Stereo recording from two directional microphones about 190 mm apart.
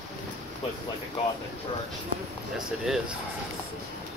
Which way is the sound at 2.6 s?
Centre (ahead or behind).